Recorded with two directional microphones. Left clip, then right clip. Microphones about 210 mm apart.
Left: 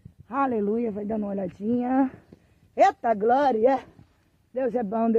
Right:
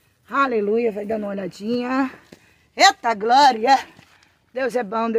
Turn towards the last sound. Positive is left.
turn(degrees=25)  # may be behind; listen again after turning